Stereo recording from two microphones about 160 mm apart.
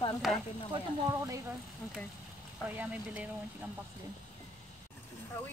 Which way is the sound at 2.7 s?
10° right (ahead or behind).